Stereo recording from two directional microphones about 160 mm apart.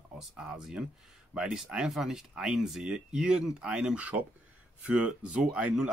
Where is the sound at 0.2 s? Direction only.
5° right (ahead or behind).